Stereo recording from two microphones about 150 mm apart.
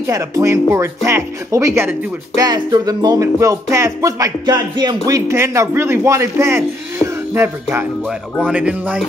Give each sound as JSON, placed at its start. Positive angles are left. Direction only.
{"t": 0.0, "sound": "speech", "side_deg": -20}